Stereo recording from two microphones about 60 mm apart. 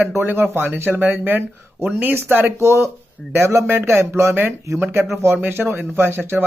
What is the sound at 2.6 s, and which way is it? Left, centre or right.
Speech, right.